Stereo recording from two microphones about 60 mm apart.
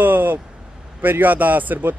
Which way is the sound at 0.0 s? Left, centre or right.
Right.